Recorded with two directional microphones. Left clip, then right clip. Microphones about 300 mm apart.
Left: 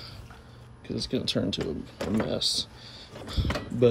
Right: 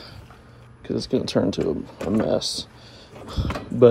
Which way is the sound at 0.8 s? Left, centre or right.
Centre.